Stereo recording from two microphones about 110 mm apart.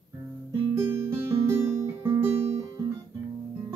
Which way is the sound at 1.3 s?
25° right (ahead or behind).